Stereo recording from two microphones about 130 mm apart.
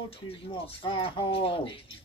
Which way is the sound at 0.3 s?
45° left (ahead or behind).